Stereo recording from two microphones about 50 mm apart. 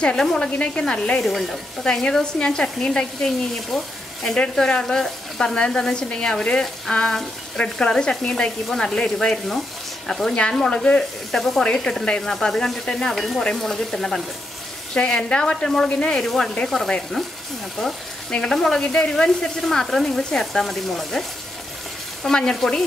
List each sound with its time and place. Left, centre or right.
0.0 s stir: centre
0.6 s speech: centre
1.2 s speech: centre
1.9 s stir: centre
3.7 s speech: centre
4.4 s stir: centre
11.3 s speech: centre
11.6 s stir: centre
13.6 s speech: centre
15.0 s speech: left
15.9 s stir: centre
16.3 s speech: centre
16.5 s stir: centre
22.3 s stir: centre